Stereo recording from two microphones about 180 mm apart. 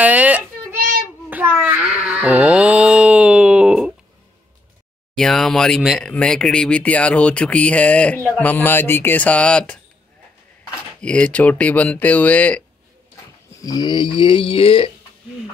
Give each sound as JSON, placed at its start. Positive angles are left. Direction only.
{"t": 0.0, "sound": "a sound", "side_deg": -10}
{"t": 5.1, "sound": "speech", "side_deg": 5}
{"t": 11.0, "sound": "speech", "side_deg": 5}
{"t": 13.6, "sound": "speech", "side_deg": 20}